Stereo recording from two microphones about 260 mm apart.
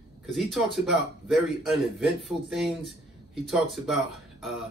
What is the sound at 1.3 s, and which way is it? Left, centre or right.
A man's voice, centre.